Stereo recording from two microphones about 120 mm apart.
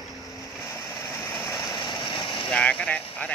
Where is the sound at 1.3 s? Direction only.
30° left (ahead or behind).